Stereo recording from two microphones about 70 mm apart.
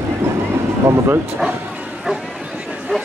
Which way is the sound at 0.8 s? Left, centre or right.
Right.